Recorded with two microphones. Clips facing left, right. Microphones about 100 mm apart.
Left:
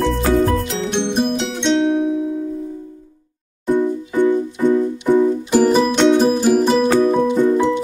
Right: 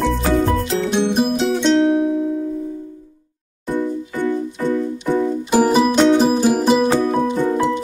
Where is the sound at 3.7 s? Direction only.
15° left (ahead or behind).